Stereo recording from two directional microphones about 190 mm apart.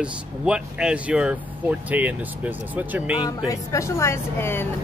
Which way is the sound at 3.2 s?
20° left (ahead or behind).